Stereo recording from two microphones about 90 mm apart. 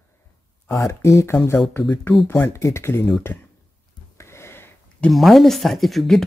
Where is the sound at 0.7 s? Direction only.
35° left (ahead or behind).